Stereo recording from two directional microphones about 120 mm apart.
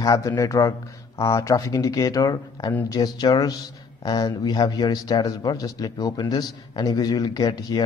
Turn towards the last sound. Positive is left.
turn(degrees=30)  # may be behind; listen again after turning